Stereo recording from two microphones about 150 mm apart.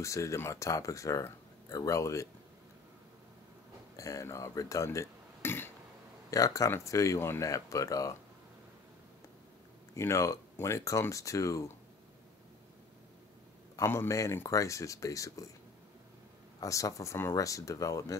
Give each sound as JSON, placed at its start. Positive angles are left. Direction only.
{"t": 0.0, "sound": "speech", "side_deg": 20}
{"t": 3.9, "sound": "speech", "side_deg": 20}
{"t": 9.9, "sound": "speech", "side_deg": 20}
{"t": 13.7, "sound": "speech", "side_deg": 20}
{"t": 16.5, "sound": "speech", "side_deg": 20}